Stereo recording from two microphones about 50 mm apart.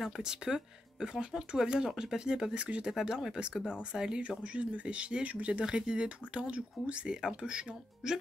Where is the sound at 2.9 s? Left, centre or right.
Centre.